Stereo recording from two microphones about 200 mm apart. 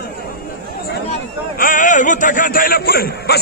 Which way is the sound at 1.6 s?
40° left (ahead or behind).